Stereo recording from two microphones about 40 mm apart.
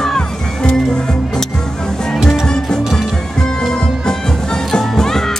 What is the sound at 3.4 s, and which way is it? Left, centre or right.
Music, centre.